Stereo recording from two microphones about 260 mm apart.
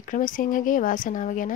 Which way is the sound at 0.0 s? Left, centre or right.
Left.